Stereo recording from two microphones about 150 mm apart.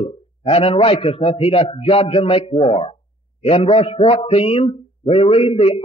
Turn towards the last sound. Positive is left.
turn(degrees=40)  # may be behind; listen again after turning